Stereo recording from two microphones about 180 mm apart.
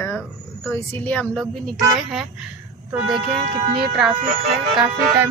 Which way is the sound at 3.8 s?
Centre (ahead or behind).